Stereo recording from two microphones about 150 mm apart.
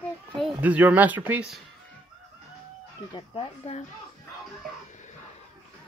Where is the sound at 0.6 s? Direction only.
10° right (ahead or behind).